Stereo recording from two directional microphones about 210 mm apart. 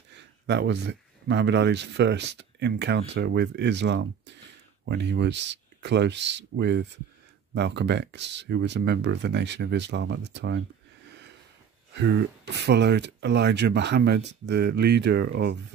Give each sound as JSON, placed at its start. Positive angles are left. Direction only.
{"t": 0.1, "sound": "speech", "side_deg": -55}
{"t": 11.9, "sound": "speech", "side_deg": -55}